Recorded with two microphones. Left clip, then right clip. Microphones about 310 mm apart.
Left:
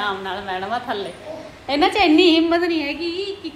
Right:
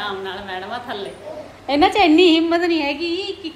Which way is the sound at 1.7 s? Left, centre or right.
Centre.